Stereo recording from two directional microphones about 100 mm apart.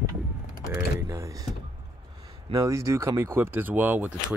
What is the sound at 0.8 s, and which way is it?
Typing, 30° right (ahead or behind).